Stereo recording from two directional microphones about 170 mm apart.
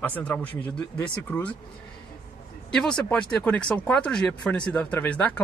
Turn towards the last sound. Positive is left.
turn(degrees=10)  # may be behind; listen again after turning